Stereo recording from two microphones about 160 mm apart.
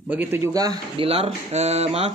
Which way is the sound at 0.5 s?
25° right (ahead or behind).